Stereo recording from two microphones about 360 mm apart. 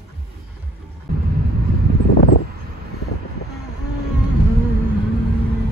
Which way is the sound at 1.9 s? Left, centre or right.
Right.